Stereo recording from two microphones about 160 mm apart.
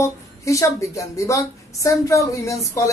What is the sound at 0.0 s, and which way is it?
A woman's voice, 20° left (ahead or behind).